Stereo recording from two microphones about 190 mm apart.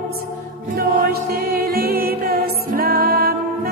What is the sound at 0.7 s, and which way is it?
Music, 50° right (ahead or behind).